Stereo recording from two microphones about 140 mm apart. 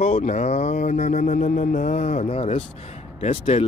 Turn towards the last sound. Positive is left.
turn(degrees=45)  # may be behind; listen again after turning